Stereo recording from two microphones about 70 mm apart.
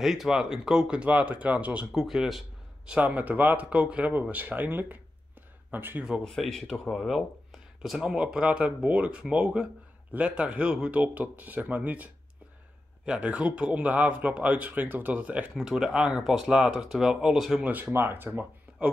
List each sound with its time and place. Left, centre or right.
0.0 s speech: centre
1.9 s speech: centre
2.9 s speech: centre
6.2 s speech: centre; by 15.5 s right
15.5 s speech: centre
17.9 s speech: right